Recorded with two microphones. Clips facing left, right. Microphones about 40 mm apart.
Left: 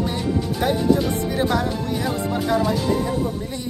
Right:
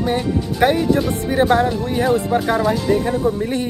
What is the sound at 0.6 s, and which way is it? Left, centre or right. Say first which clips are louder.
Speech: right 8 dB; right.